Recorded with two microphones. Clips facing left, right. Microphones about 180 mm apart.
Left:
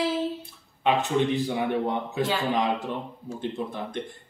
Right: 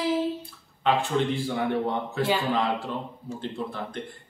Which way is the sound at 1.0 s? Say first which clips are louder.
Left 2 dB; 15° left (ahead or behind).